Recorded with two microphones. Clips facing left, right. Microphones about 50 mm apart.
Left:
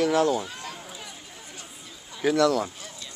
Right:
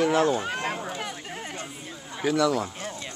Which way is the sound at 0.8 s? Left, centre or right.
Right.